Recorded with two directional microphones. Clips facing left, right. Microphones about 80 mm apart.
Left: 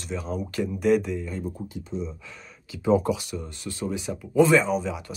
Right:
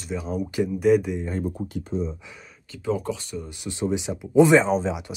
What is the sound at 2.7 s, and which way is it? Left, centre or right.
Speech, centre.